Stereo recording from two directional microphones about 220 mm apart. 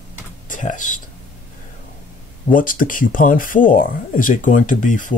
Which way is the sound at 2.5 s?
40° left (ahead or behind).